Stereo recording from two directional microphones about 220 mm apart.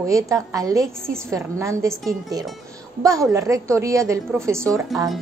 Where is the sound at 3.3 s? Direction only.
15° right (ahead or behind).